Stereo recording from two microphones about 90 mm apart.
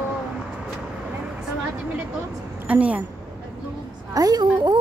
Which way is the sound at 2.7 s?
15° right (ahead or behind).